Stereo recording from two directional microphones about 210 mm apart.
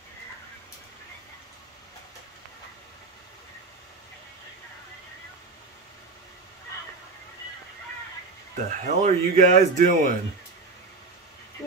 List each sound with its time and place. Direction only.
8.5 s speech: 35° right (ahead or behind)